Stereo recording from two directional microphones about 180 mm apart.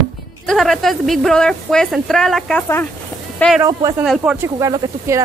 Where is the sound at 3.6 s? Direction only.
20° right (ahead or behind).